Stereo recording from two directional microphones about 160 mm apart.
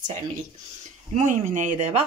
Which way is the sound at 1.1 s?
50° right (ahead or behind).